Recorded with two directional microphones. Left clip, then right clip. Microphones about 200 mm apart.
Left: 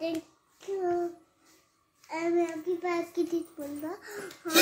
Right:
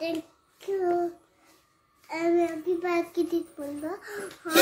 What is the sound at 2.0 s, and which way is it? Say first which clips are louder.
A child's voice: right 4 dB; 20° right (ahead or behind).